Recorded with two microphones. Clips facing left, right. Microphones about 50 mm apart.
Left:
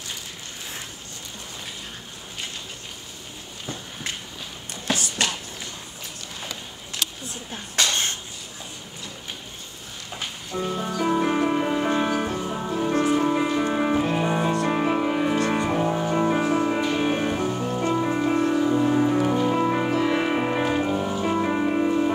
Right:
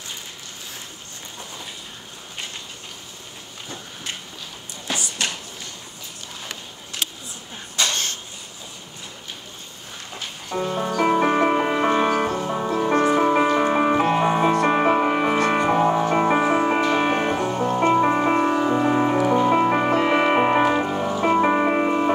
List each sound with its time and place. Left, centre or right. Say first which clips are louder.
7.9 s a sound: left 1 dB; left
10.5 s music: right 4 dB; right
12.1 s music: right 4 dB; right
19.9 s music: right 4 dB; right